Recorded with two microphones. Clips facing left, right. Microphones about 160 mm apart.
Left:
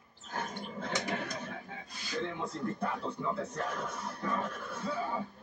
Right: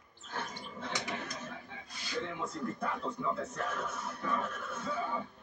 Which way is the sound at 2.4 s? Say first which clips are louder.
Left 2 dB; 30° left (ahead or behind).